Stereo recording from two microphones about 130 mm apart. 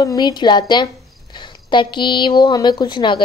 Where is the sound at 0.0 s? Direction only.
30° left (ahead or behind).